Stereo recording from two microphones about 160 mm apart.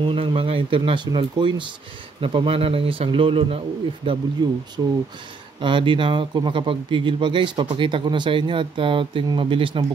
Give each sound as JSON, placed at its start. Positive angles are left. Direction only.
{"t": 0.0, "sound": "speech", "side_deg": -35}